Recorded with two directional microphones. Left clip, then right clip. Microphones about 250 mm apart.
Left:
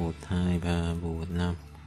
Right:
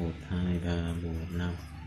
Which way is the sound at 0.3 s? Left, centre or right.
Left.